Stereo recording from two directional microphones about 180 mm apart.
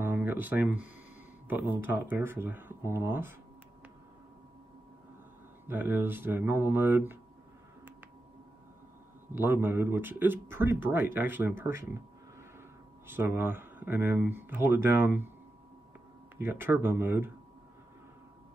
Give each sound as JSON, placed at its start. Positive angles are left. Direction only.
{"t": 0.0, "sound": "speech", "side_deg": -10}
{"t": 5.7, "sound": "speech", "side_deg": -10}
{"t": 9.3, "sound": "speech", "side_deg": -10}
{"t": 16.3, "sound": "speech", "side_deg": -10}